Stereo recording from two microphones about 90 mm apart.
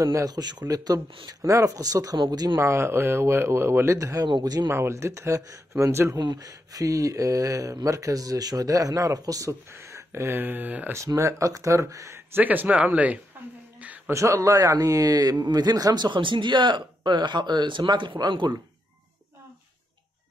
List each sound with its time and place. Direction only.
0.0 s speech: 35° right (ahead or behind)
2.6 s speech: 30° right (ahead or behind); by 4.6 s 45° right (ahead or behind)
4.6 s speech: 30° right (ahead or behind)
6.1 s speech: 50° right (ahead or behind); by 11.0 s 20° right (ahead or behind)
11.0 s speech: 35° right (ahead or behind)
12.4 s speech: 20° right (ahead or behind)
13.7 s a sound: 15° right (ahead or behind)
14.1 s speech: 35° right (ahead or behind); by 18.6 s 55° right (ahead or behind)